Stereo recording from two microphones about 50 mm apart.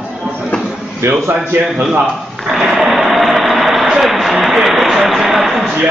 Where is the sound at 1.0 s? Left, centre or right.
Right.